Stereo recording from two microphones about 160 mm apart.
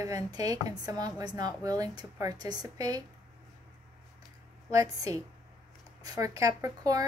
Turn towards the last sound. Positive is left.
turn(degrees=-20)  # may be behind; listen again after turning